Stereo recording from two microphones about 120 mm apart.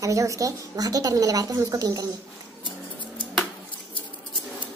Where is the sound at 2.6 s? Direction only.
45° left (ahead or behind).